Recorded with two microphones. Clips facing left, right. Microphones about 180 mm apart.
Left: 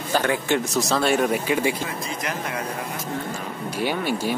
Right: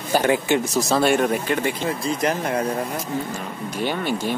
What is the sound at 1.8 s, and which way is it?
Speech, 35° right (ahead or behind).